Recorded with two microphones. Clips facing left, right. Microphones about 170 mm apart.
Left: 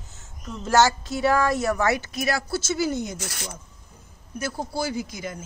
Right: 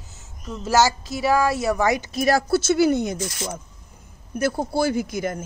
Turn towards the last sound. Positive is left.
turn(degrees=-55)  # may be behind; listen again after turning